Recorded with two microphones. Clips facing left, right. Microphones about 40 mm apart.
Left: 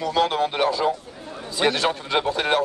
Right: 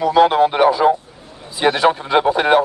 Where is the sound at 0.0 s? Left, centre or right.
Centre.